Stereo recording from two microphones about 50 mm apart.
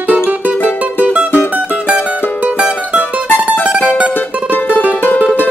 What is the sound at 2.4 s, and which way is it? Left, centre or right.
Music, right.